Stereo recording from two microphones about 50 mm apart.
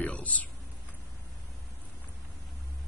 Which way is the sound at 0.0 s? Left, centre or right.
Left.